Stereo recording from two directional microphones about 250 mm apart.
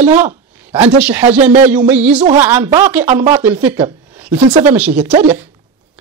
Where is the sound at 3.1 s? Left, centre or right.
Right.